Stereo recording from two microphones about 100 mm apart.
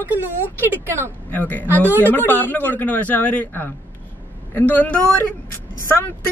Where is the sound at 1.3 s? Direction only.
15° left (ahead or behind).